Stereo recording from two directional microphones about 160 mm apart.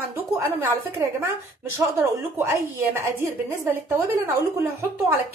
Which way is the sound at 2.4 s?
15° right (ahead or behind).